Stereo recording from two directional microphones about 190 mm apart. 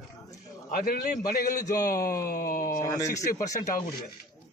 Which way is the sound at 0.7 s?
50° left (ahead or behind).